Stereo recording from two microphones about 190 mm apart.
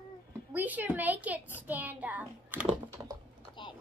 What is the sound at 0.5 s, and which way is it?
A child's voice, 10° right (ahead or behind).